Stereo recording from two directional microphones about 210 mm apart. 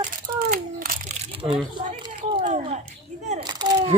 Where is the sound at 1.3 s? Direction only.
25° right (ahead or behind).